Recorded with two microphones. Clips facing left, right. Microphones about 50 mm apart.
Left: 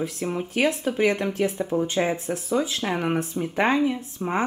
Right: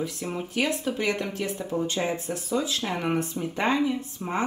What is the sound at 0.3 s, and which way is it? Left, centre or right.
Speech, centre.